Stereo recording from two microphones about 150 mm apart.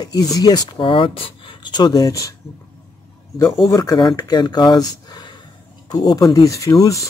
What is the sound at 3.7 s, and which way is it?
Speech, 25° left (ahead or behind).